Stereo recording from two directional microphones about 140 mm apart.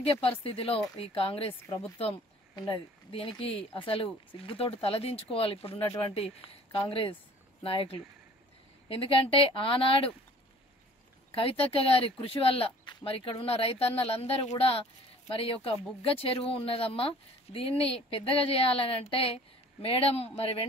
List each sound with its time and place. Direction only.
0.0 s speech: 40° left (ahead or behind)
11.3 s speech: 40° left (ahead or behind)